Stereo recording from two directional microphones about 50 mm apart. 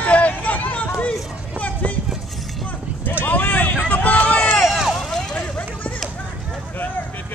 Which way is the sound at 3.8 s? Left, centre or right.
Left.